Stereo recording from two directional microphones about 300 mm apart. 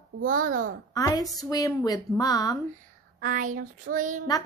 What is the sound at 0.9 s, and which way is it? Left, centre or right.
A woman's voice, centre.